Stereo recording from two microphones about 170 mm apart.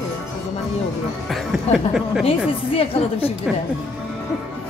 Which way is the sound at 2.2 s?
35° left (ahead or behind).